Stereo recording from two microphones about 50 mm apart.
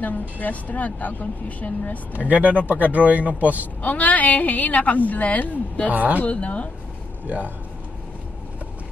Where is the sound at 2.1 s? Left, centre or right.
Right.